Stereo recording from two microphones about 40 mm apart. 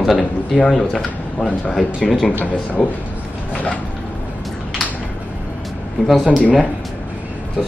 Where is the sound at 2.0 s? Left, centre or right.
Centre.